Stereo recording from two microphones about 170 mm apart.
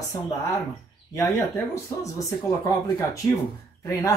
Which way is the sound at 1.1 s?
20° left (ahead or behind).